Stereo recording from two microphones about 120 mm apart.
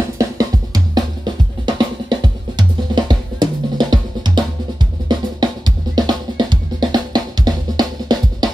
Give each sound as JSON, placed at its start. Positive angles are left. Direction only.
{"t": 0.2, "sound": "drum", "side_deg": -30}